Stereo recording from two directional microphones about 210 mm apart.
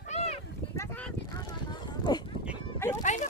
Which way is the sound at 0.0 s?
30° left (ahead or behind).